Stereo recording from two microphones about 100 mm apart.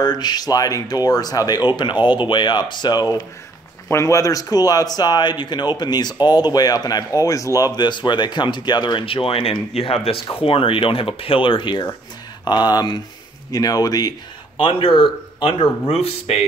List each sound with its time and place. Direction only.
0.0 s speech: 45° left (ahead or behind)
3.9 s speech: 30° left (ahead or behind); by 9.0 s 45° left (ahead or behind)
9.0 s speech: 65° left (ahead or behind); by 14.1 s 40° left (ahead or behind)
14.6 s speech: 60° left (ahead or behind); by 16.3 s 80° left